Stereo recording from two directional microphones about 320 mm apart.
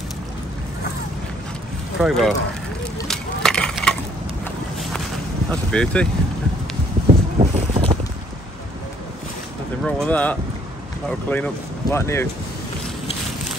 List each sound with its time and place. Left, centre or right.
2.0 s speech: centre
3.0 s a sound: centre
4.5 s run: centre
5.5 s speech: centre
7.3 s boat: centre
9.8 s speech: centre